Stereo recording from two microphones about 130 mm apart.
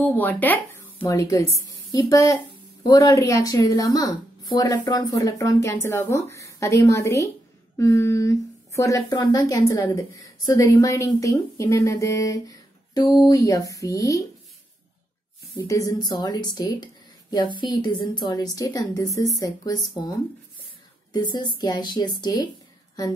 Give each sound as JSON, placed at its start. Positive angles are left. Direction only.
{"t": 0.0, "sound": "a sound", "side_deg": 15}
{"t": 1.0, "sound": "speech", "side_deg": 25}
{"t": 15.5, "sound": "speech", "side_deg": 25}